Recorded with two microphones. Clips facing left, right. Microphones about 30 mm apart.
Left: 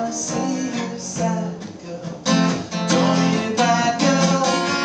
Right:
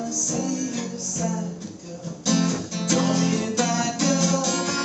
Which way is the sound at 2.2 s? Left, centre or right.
Left.